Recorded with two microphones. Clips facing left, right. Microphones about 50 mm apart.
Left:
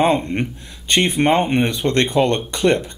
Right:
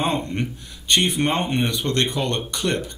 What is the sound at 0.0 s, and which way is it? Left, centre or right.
Speech, left.